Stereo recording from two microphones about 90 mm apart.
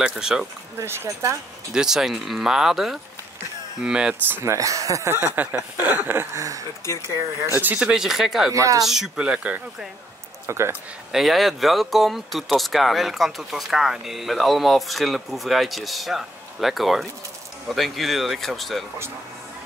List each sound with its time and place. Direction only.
0.0 s speech: 5° right (ahead or behind)
0.7 s speech: 30° right (ahead or behind)
1.7 s speech: 5° right (ahead or behind)
4.3 s speech: 30° right (ahead or behind)
7.5 s speech: 20° right (ahead or behind)
7.8 s speech: 5° right (ahead or behind)
8.5 s speech: 35° right (ahead or behind)
8.8 s speech: 5° right (ahead or behind)
10.4 s speech: 30° right (ahead or behind)
11.1 s speech: centre (ahead or behind)